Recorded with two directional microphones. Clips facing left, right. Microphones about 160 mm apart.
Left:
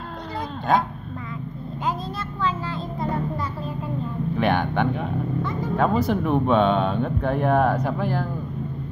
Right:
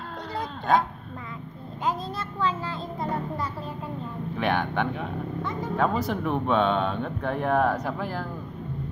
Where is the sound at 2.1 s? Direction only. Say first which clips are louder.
Left 1 dB; 25° right (ahead or behind).